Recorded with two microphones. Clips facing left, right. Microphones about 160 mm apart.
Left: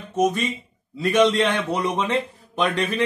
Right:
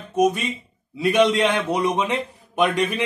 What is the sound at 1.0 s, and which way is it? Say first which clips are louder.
Speech: even; 15° right (ahead or behind).